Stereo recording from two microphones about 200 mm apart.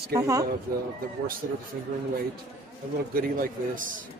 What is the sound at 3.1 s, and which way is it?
Speech, 45° right (ahead or behind).